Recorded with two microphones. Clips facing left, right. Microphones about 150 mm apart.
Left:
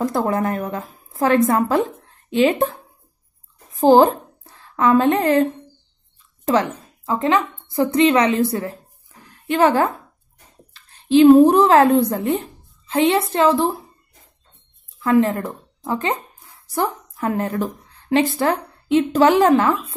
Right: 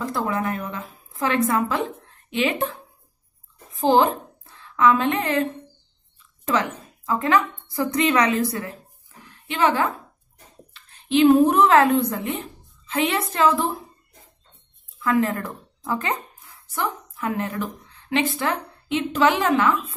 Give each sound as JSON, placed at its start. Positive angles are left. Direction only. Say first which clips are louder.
{"t": 0.0, "sound": "a woman's voice", "louder": "left 5 dB", "side_deg": 40}
{"t": 9.5, "sound": "a woman's voice", "louder": "left 5 dB", "side_deg": 45}
{"t": 15.0, "sound": "speech", "louder": "left 5 dB", "side_deg": 30}